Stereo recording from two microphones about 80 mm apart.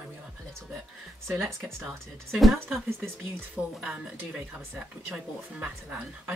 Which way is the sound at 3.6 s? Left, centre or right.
Centre.